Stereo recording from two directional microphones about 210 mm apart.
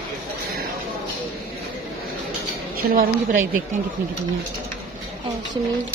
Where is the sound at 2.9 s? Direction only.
45° right (ahead or behind).